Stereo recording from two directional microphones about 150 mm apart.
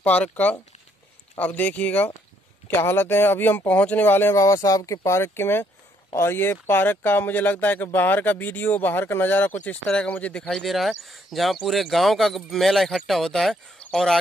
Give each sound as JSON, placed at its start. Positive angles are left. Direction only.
{"t": 0.0, "sound": "speech", "side_deg": 10}